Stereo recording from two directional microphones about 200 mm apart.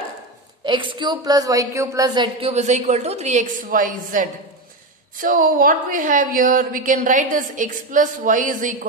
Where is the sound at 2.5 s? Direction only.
35° right (ahead or behind).